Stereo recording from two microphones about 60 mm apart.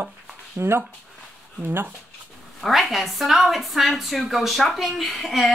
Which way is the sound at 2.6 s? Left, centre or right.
Centre.